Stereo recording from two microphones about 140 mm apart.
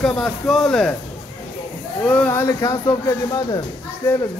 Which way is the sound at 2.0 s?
10° left (ahead or behind).